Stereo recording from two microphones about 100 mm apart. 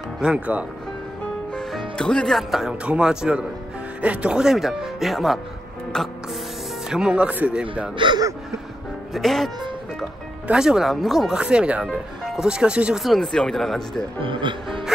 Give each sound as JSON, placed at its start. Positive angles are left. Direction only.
{"t": 0.2, "sound": "speech", "side_deg": -10}
{"t": 2.0, "sound": "speech", "side_deg": 5}
{"t": 6.9, "sound": "speech", "side_deg": -10}
{"t": 8.0, "sound": "speech", "side_deg": -55}
{"t": 9.1, "sound": "speech", "side_deg": 0}
{"t": 10.5, "sound": "speech", "side_deg": -5}
{"t": 14.2, "sound": "speech", "side_deg": -55}
{"t": 14.9, "sound": "music", "side_deg": -5}